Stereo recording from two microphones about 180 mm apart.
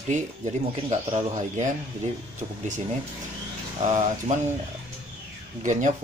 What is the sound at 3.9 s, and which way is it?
Speech, 40° right (ahead or behind).